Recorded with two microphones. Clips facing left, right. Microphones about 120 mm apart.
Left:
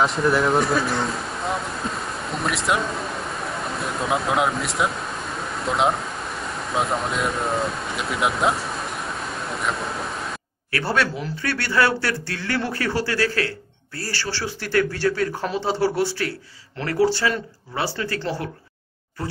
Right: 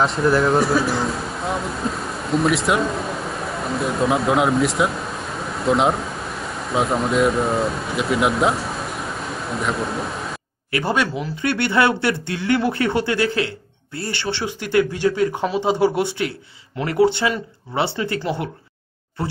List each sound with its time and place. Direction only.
0.0 s speech: centre (ahead or behind)
10.7 s speech: 15° right (ahead or behind)